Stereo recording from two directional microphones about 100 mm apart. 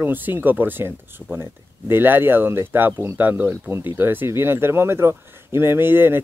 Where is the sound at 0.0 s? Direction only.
20° right (ahead or behind).